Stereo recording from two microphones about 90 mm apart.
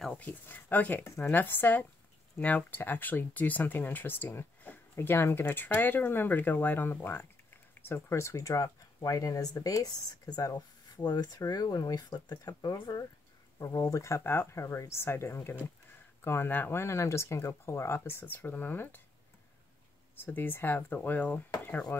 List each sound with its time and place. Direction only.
0.1 s speech: 20° left (ahead or behind)
1.0 s speech: 30° left (ahead or behind)
1.3 s speech: 20° left (ahead or behind); by 11.1 s 40° left (ahead or behind)
11.1 s speech: 50° left (ahead or behind); by 18.9 s 20° left (ahead or behind)
20.2 s speech: 20° left (ahead or behind)